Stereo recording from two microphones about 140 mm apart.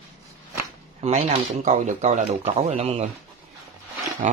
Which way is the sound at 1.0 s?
50° right (ahead or behind).